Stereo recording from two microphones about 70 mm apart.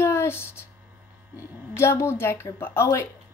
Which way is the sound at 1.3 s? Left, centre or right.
Left.